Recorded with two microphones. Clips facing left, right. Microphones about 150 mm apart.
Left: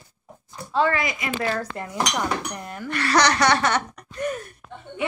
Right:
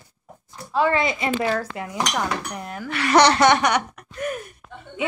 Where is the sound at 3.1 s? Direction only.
25° right (ahead or behind); by 4.4 s 10° right (ahead or behind).